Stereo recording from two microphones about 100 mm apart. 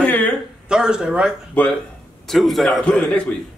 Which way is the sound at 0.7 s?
5° right (ahead or behind).